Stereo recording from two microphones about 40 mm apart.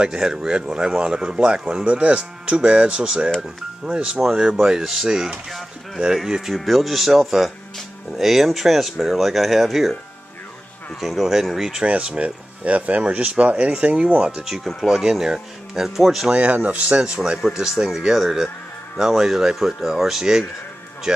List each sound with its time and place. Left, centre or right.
0.0 s speech: centre
4.2 s speech: centre
6.5 s speech: centre
11.0 s speech: centre
11.8 s speech: right
13.7 s speech: right
14.6 s speech: centre
14.9 s speech: centre
16.3 s speech: right; by 20.4 s centre